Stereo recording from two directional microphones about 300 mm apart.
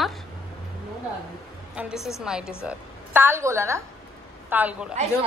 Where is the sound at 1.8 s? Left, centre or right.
Centre.